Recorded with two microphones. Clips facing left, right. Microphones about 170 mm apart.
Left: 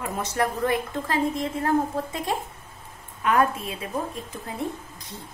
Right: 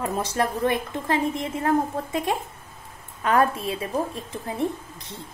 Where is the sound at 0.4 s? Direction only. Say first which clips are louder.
Even; 25° right (ahead or behind).